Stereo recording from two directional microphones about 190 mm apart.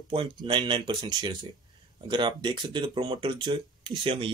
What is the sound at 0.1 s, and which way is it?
Speech, 25° right (ahead or behind).